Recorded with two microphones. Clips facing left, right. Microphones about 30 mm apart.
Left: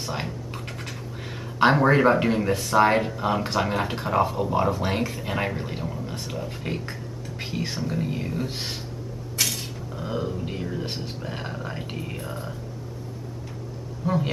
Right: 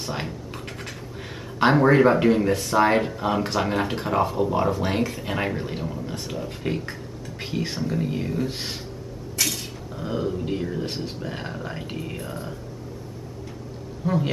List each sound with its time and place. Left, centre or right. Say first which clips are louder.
0.0 s speech: even; centre
1.6 s speech: right 1 dB; centre
14.0 s speech: right 1 dB; centre